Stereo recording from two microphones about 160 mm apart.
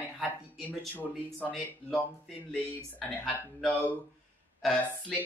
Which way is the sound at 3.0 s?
10° left (ahead or behind).